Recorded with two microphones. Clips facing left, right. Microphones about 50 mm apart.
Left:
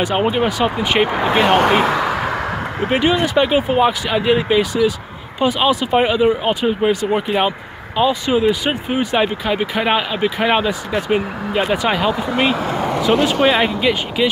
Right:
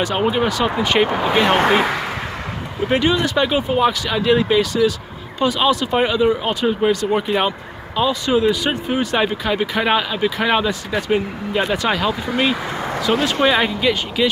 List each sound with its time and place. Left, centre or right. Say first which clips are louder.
0.0 s speech: left 1 dB; centre
2.9 s speech: left 1 dB; centre